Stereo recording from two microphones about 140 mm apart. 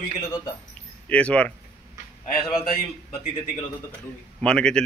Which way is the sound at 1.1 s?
10° left (ahead or behind).